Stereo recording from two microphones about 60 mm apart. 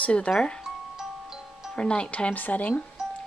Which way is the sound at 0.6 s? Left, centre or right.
Centre.